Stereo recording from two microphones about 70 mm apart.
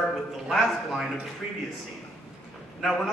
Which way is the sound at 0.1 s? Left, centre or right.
Centre.